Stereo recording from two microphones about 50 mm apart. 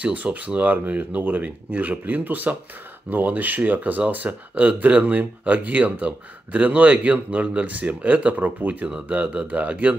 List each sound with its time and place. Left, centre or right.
0.0 s speech: right